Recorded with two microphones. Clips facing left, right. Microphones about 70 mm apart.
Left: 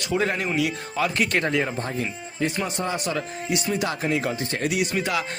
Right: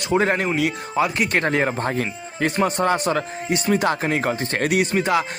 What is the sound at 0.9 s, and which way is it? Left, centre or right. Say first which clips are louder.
Speech: right 3 dB; centre.